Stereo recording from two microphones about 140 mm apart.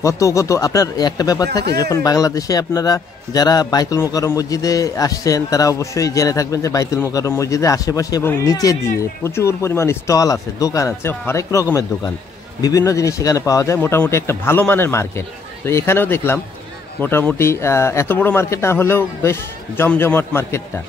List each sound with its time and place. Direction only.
0.0 s speech: 20° left (ahead or behind)
12.6 s a man's voice: 25° left (ahead or behind)